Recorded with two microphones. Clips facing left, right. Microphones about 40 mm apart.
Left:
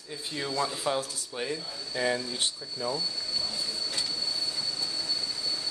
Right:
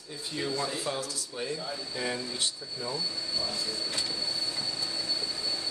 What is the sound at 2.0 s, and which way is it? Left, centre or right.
Speech, centre.